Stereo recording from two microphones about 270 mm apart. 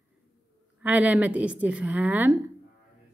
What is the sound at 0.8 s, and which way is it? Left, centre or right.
A woman's voice, centre.